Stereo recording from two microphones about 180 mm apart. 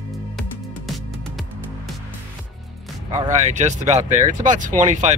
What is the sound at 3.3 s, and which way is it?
Speech, 40° right (ahead or behind).